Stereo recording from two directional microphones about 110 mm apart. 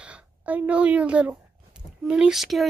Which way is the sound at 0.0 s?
10° right (ahead or behind).